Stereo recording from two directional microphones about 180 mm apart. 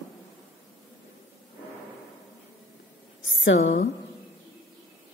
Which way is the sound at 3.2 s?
90° left.